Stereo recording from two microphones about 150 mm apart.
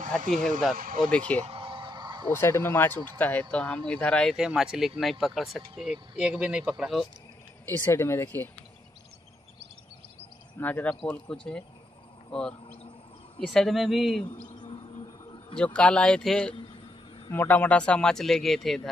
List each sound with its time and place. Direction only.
0.0 s speech: 55° right (ahead or behind)
0.7 s speech: 70° right (ahead or behind)
1.0 s speech: 5° left (ahead or behind)
1.4 s a sound: 40° right (ahead or behind)
2.3 s speech: 15° left (ahead or behind)
4.4 s speech: 5° right (ahead or behind)
7.6 s speech: 15° left (ahead or behind)
10.6 s speech: 10° left (ahead or behind)
13.5 s speech: centre (ahead or behind)
14.2 s a sound: 35° left (ahead or behind)
15.5 s speech: 10° left (ahead or behind)